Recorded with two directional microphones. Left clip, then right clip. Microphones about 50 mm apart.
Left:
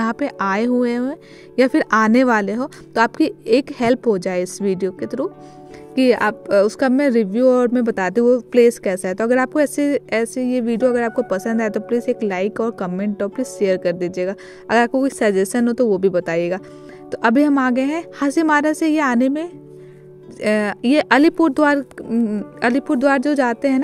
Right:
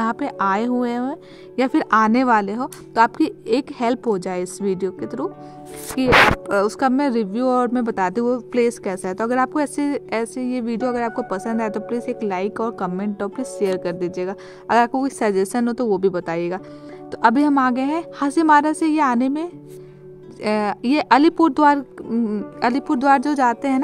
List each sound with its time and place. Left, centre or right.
0.0 s speech: left
1.9 s a woman's voice: left
6.5 s speech: left
14.9 s speech: left
17.1 s speech: left
21.4 s speech: left